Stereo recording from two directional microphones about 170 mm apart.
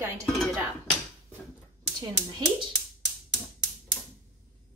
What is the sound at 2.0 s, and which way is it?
Speech, 25° right (ahead or behind).